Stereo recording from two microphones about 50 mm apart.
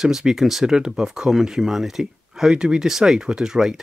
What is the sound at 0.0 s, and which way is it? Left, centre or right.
Speech, centre.